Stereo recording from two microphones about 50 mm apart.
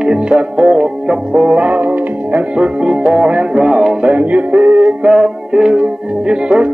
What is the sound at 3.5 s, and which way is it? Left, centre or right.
Music, centre.